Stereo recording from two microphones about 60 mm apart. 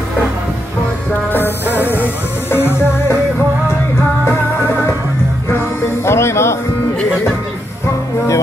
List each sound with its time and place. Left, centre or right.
2.5 s music: left
6.0 s music: left